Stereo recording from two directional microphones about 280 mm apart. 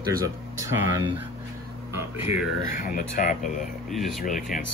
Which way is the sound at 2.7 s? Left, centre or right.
Left.